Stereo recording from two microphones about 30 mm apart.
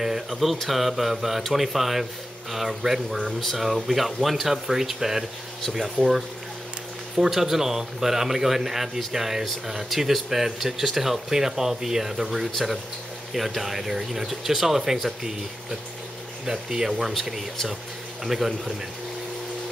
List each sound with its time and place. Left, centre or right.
0.0 s speech: centre
7.2 s speech: centre
13.6 s speech: centre
18.2 s speech: centre